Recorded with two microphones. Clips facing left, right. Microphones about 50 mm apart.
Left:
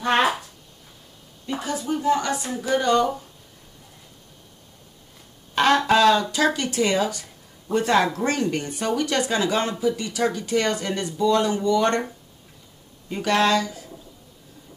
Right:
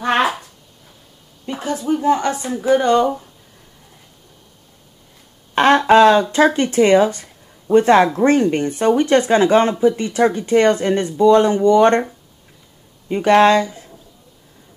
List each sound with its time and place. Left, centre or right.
0.2 s a sound: centre
1.5 s a woman's voice: centre
2.0 s speech: right
5.5 s a sound: right
5.9 s speech: right
13.1 s speech: right